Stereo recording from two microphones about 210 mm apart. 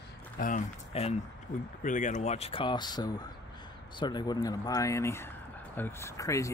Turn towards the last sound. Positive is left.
turn(degrees=15)  # may be behind; listen again after turning